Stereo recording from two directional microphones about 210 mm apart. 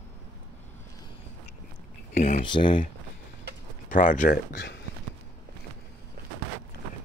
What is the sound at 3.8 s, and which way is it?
Speech, 40° left (ahead or behind).